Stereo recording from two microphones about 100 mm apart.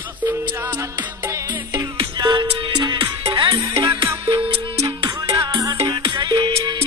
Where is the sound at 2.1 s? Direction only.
45° right (ahead or behind).